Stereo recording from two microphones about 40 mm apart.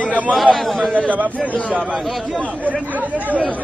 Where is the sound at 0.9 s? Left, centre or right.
Right.